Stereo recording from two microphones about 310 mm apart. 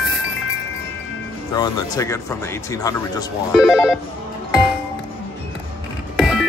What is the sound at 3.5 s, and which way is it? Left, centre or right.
Telephone, centre.